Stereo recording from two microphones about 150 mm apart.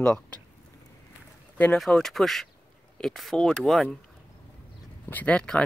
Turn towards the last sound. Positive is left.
turn(degrees=5)  # may be behind; listen again after turning